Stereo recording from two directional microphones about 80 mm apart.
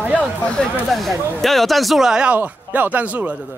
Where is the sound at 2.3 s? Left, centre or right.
Right.